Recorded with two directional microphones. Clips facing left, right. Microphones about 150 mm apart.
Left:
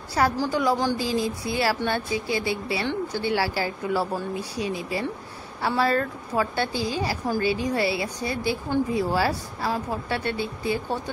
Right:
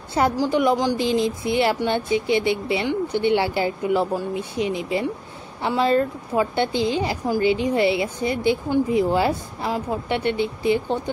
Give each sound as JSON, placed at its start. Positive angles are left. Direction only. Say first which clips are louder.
{"t": 0.1, "sound": "a woman's voice", "louder": "right 3 dB", "side_deg": -20}